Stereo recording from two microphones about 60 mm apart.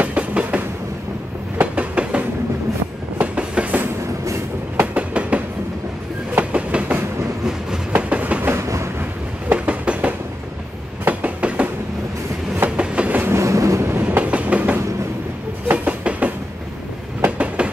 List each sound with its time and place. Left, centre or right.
0.0 s train: right
1.6 s train: right
8.5 s train: right
9.5 s a sound: right
11.1 s train: right
13.4 s train: right
14.0 s train: right
17.6 s a sound: centre